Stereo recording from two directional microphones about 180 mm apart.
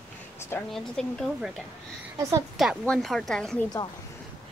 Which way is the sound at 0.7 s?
5° left (ahead or behind).